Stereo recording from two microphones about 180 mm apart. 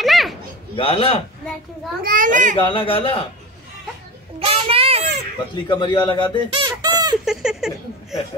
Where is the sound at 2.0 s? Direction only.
50° right (ahead or behind).